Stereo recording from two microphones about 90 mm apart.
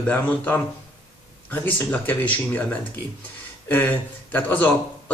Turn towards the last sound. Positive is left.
turn(degrees=20)  # may be behind; listen again after turning